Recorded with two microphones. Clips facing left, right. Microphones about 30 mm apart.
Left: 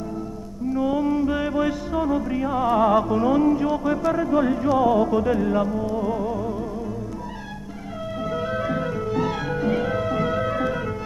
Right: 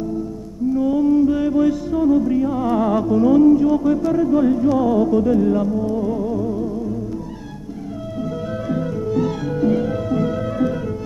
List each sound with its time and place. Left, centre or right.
0.7 s music: left
8.2 s music: left